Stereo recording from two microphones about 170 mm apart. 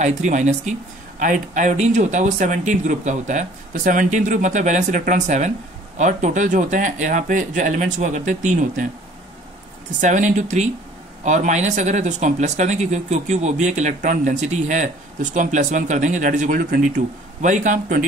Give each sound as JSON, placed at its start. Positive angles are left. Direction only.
{"t": 0.0, "sound": "speech", "side_deg": -45}
{"t": 9.9, "sound": "speech", "side_deg": -45}